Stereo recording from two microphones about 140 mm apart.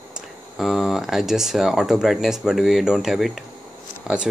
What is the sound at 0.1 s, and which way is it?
Speech, centre (ahead or behind).